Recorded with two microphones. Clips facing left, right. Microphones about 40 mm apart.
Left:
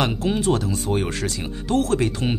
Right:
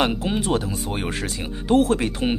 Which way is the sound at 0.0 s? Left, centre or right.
Centre.